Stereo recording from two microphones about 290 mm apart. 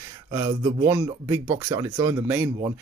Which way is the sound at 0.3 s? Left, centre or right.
Centre.